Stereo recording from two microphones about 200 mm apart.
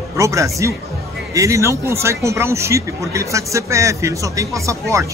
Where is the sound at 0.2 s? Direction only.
15° right (ahead or behind).